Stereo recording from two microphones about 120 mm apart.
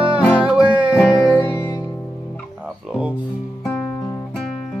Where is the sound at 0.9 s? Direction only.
25° left (ahead or behind).